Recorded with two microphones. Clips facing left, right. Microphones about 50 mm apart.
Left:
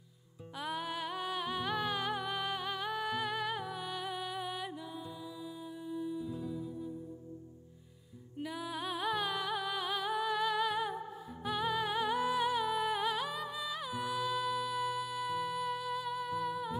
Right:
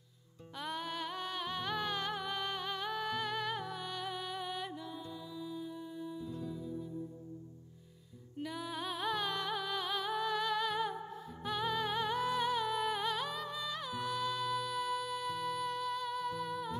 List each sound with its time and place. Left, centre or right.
0.6 s music: centre
6.5 s music: left
8.4 s music: centre